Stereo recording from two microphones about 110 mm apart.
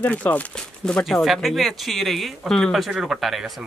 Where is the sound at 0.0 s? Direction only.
15° left (ahead or behind).